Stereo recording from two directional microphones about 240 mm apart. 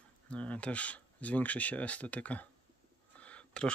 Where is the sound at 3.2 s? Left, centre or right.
Centre.